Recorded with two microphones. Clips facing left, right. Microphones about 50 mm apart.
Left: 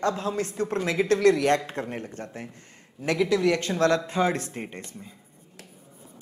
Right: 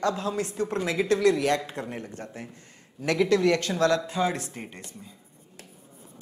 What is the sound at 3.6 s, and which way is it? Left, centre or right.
Speech, left.